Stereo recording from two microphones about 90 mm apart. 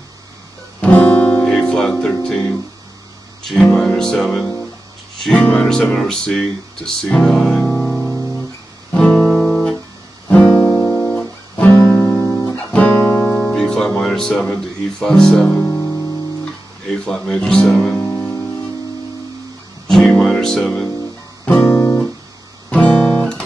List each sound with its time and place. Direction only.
0.7 s guitar: 10° left (ahead or behind)
3.4 s music: 5° left (ahead or behind)
8.9 s guitar: 5° left (ahead or behind)
11.7 s guitar: 25° left (ahead or behind)
12.0 s guitar: 5° left (ahead or behind)
12.5 s music: 15° left (ahead or behind)
13.2 s music: 5° left (ahead or behind)
17.0 s speech: 5° left (ahead or behind)
17.6 s music: centre (ahead or behind)
18.1 s music: 15° left (ahead or behind)
19.9 s music: 5° left (ahead or behind)
21.5 s guitar: 20° left (ahead or behind)
22.7 s guitar: 10° left (ahead or behind)